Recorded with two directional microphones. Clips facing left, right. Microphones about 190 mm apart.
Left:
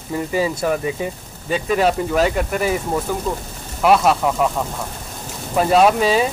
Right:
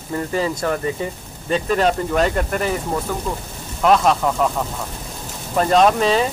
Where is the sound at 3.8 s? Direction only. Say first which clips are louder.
Left 1 dB; 5° left (ahead or behind).